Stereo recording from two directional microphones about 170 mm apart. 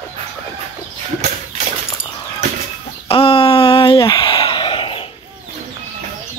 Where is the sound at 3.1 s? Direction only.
35° left (ahead or behind).